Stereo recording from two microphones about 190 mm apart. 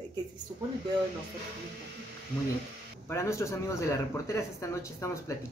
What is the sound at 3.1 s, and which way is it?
Speech, 15° left (ahead or behind).